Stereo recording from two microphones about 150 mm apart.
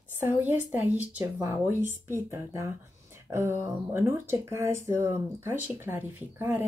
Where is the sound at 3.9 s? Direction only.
15° right (ahead or behind).